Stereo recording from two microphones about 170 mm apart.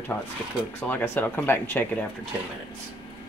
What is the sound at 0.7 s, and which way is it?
Speech, 15° left (ahead or behind).